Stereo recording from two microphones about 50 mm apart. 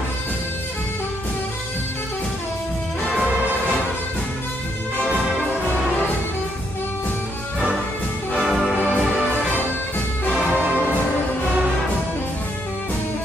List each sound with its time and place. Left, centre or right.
8.4 s music: centre
8.7 s music: left